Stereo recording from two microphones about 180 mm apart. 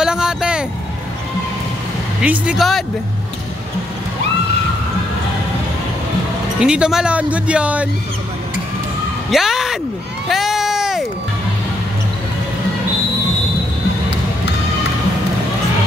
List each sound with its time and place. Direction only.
0.0 s vehicle: 5° right (ahead or behind)
2.2 s speech: 5° right (ahead or behind)
6.6 s speech: 5° right (ahead or behind)
9.3 s a sound: centre (ahead or behind)